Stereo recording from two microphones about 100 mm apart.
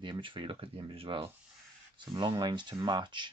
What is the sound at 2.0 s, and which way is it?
Speech, 45° right (ahead or behind).